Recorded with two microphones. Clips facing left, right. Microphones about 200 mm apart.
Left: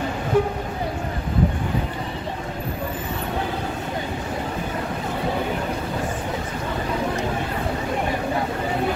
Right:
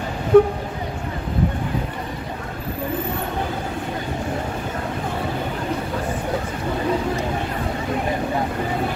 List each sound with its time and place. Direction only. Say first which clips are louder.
0.3 s speech: right 8 dB; 60° right (ahead or behind)